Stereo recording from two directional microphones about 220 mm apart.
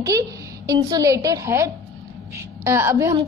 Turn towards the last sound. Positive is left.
turn(degrees=-10)  # may be behind; listen again after turning